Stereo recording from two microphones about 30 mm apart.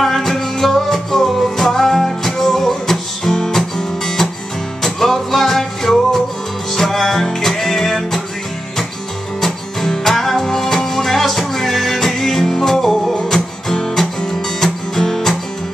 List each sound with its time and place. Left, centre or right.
0.0 s music: centre
10.0 s music: centre